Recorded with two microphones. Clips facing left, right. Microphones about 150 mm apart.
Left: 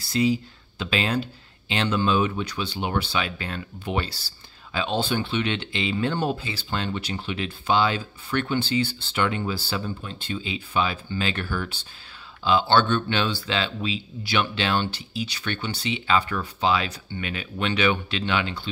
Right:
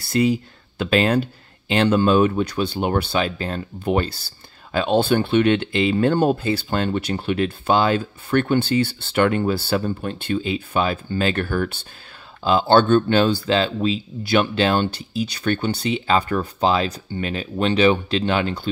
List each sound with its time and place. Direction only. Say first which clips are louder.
0.0 s speech: right 3 dB; 55° right (ahead or behind)